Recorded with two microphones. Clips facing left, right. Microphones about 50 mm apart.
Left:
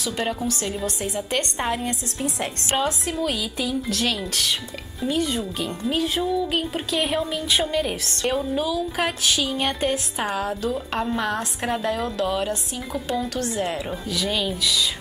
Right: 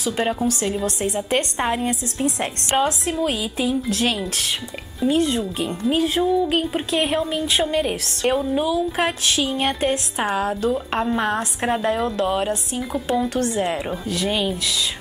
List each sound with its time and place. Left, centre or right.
0.0 s a woman's voice: centre
5.4 s speech: centre
5.9 s a woman's voice: right; by 10.8 s centre
11.1 s speech: right
12.9 s a woman's voice: centre